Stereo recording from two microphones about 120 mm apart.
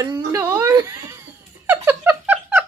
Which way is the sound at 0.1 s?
20° right (ahead or behind).